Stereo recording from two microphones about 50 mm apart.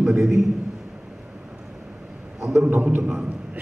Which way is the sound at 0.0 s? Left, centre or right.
Centre.